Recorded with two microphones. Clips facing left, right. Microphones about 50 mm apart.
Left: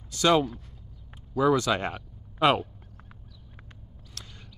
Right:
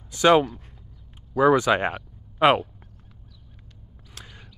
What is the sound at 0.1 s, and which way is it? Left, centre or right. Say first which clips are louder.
Speech: right 5 dB; right.